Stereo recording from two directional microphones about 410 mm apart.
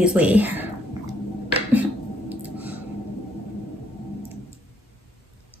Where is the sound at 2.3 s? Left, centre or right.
Centre.